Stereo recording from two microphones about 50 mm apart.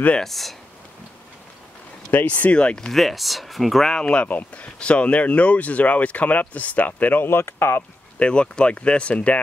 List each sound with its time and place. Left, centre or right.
0.2 s speech: centre
2.1 s speech: left
2.9 s speech: centre
3.9 s speech: centre
4.2 s speech: left
7.2 s speech: left
8.2 s speech: left